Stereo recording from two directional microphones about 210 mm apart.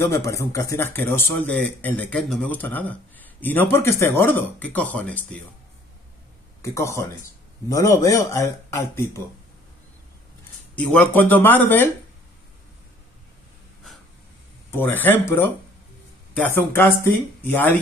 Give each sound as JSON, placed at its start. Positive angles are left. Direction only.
{"t": 0.0, "sound": "speech", "side_deg": 15}
{"t": 6.6, "sound": "speech", "side_deg": 15}
{"t": 10.8, "sound": "speech", "side_deg": 5}
{"t": 14.7, "sound": "speech", "side_deg": 10}